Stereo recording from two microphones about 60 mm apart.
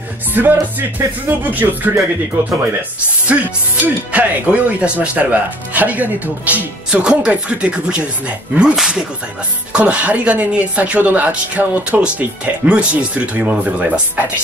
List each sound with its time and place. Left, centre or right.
0.3 s speech: right
3.3 s speech: right
6.9 s speech: centre